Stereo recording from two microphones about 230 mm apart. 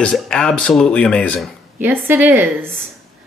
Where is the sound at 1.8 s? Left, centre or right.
Centre.